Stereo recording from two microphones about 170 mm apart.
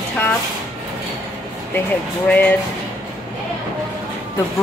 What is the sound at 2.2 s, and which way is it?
Speech, 10° left (ahead or behind).